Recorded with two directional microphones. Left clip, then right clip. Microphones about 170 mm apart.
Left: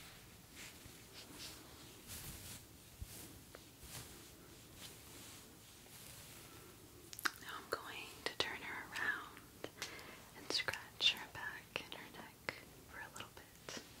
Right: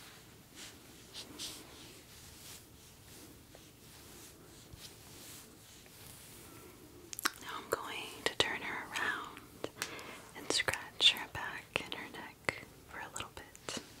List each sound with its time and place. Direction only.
7.1 s whispering: 40° right (ahead or behind)